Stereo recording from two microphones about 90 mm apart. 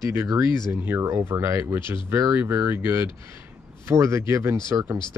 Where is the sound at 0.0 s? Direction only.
25° right (ahead or behind).